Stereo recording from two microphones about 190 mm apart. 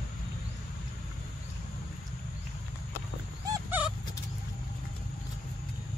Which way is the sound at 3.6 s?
10° right (ahead or behind).